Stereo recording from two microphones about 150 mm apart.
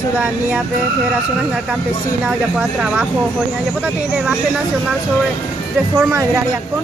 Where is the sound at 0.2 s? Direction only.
10° right (ahead or behind).